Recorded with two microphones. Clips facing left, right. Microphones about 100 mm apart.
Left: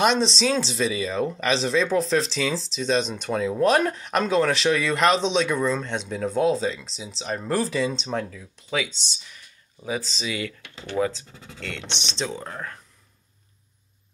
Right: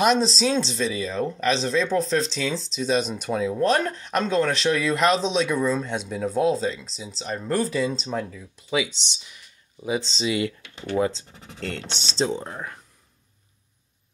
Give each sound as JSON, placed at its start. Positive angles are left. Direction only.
{"t": 0.0, "sound": "speech", "side_deg": 0}
{"t": 3.5, "sound": "speech", "side_deg": 10}
{"t": 12.4, "sound": "speech", "side_deg": -15}